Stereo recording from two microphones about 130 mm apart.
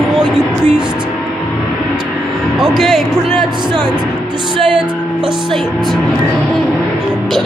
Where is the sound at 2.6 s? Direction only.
Centre (ahead or behind).